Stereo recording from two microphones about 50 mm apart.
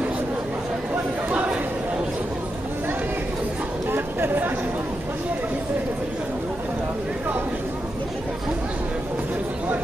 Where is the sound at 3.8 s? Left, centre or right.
Right.